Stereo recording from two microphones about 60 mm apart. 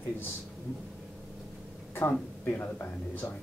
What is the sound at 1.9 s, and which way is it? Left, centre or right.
Speech, left.